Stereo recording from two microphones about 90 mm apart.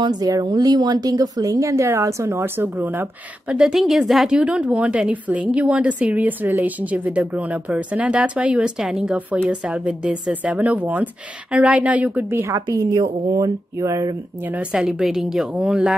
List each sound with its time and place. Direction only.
0.0 s speech: 45° right (ahead or behind); by 3.5 s 20° right (ahead or behind)
3.5 s a woman's voice: 5° right (ahead or behind)
12.3 s a woman's voice: 25° right (ahead or behind)
12.9 s speech: 50° right (ahead or behind)
13.7 s speech: 35° right (ahead or behind)
14.4 s a woman's voice: 15° right (ahead or behind)